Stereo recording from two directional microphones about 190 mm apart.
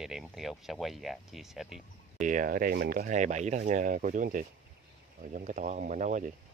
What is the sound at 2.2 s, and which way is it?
Speech, 45° right (ahead or behind).